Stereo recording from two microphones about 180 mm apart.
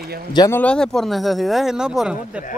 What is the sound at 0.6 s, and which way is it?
Speech, 5° left (ahead or behind).